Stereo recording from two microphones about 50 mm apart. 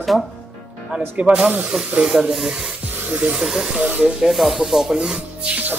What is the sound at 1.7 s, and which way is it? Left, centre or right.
Speech, centre.